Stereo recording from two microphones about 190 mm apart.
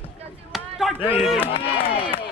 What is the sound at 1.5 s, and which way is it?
Speech, 30° left (ahead or behind).